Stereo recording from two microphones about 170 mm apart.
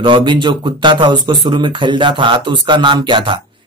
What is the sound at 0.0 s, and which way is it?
Speech, 30° right (ahead or behind).